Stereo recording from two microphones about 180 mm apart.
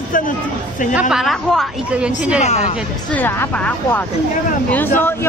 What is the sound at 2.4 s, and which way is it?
Speech, 40° left (ahead or behind).